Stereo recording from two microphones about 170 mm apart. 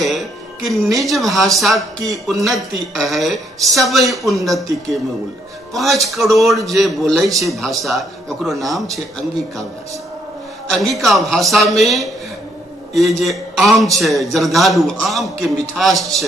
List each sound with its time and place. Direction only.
0.0 s speech: centre (ahead or behind)
10.7 s a man's voice: centre (ahead or behind)